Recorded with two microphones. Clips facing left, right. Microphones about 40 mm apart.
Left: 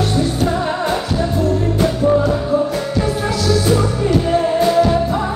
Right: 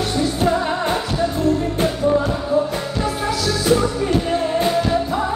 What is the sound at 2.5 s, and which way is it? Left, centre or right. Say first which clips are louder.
Music: even; centre.